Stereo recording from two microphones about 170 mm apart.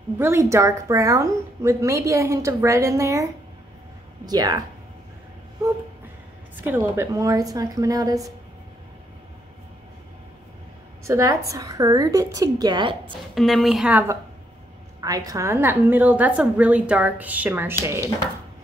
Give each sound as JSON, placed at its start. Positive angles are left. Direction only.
{"t": 0.2, "sound": "a woman's voice", "side_deg": -15}
{"t": 4.3, "sound": "a woman's voice", "side_deg": -25}
{"t": 6.6, "sound": "a woman's voice", "side_deg": -15}
{"t": 11.1, "sound": "a woman's voice", "side_deg": -20}
{"t": 13.3, "sound": "a woman's voice", "side_deg": 0}
{"t": 15.0, "sound": "a woman's voice", "side_deg": -20}